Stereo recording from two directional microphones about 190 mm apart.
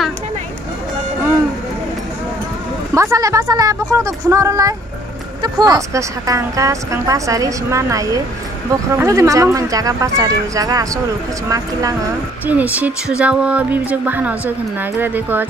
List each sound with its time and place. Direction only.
2.9 s speech: 15° right (ahead or behind)